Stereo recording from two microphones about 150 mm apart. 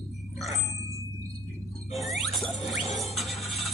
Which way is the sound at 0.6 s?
20° right (ahead or behind).